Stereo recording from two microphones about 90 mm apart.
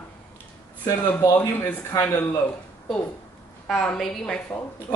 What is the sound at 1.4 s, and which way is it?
Speech, 20° left (ahead or behind).